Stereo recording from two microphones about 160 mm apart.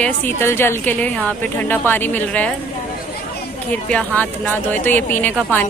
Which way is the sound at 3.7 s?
10° left (ahead or behind).